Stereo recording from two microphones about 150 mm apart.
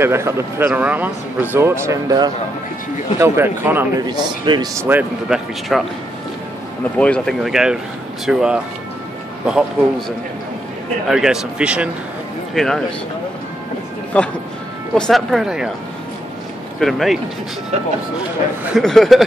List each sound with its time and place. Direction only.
0.0 s speech: 15° right (ahead or behind)
3.2 s speech: 15° right (ahead or behind)
4.1 s a man's voice: 30° right (ahead or behind)
4.8 s speech: 10° right (ahead or behind)
7.0 s speech: 5° left (ahead or behind)
14.1 s speech: 10° left (ahead or behind)
16.8 s speech: centre (ahead or behind)
18.8 s speech: 5° left (ahead or behind)